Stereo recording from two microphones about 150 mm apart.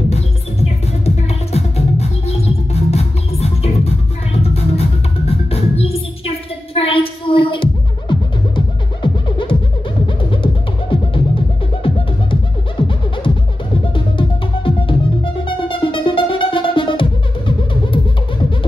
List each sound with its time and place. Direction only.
0.1 s music: 45° left (ahead or behind)
13.9 s music: 35° left (ahead or behind)